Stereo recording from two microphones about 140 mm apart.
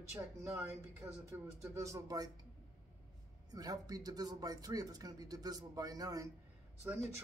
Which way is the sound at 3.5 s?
25° right (ahead or behind).